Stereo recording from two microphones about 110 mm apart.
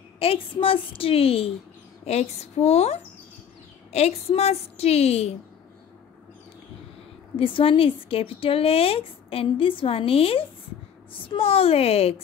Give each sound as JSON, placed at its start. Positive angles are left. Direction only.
{"t": 0.2, "sound": "a woman's voice", "side_deg": 55}
{"t": 2.0, "sound": "a woman's voice", "side_deg": 75}
{"t": 7.3, "sound": "a woman's voice", "side_deg": 55}